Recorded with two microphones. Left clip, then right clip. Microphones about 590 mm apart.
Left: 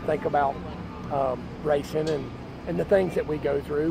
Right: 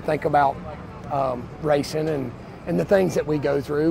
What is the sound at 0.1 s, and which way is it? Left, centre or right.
Speech, right.